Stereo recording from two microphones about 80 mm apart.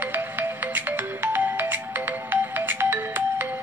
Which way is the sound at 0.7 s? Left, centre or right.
Right.